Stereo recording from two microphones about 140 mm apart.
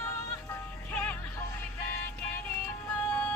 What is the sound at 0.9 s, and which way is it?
Music, 15° left (ahead or behind).